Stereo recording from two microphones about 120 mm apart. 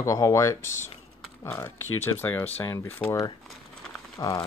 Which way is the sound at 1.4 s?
20° left (ahead or behind).